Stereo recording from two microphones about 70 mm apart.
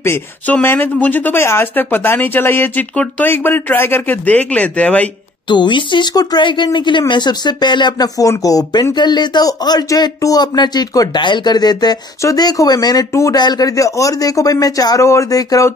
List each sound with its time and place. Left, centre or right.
0.5 s speech: left
1.4 s speech: left; by 5.1 s centre
5.5 s speech: left
8.3 s speech: left
8.9 s speech: left
9.8 s speech: left
15.0 s speech: left